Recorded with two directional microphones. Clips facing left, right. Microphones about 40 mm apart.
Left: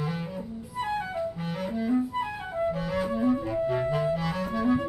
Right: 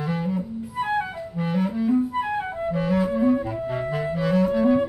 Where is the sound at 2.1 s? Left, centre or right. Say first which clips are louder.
Right 4 dB; right.